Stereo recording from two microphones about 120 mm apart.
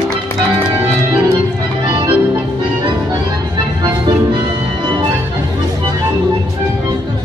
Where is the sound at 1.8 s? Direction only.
45° right (ahead or behind).